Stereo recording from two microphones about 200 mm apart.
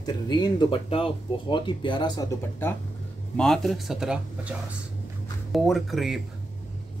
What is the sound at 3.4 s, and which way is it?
Speech, centre (ahead or behind).